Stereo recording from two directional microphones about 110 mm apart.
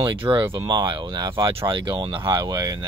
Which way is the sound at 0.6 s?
40° right (ahead or behind).